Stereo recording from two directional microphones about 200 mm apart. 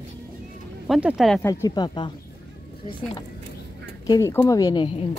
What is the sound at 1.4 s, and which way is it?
Speech, 15° left (ahead or behind).